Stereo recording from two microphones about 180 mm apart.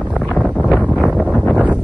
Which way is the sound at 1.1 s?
5° right (ahead or behind).